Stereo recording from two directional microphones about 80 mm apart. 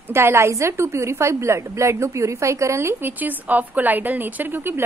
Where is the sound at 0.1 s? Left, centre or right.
Right.